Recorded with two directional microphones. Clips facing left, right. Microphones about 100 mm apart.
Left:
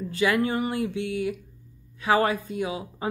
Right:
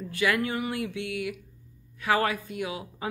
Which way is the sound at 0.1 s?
30° left (ahead or behind).